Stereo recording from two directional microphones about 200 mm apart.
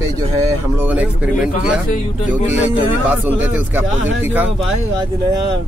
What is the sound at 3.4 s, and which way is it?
A man's voice, 10° right (ahead or behind).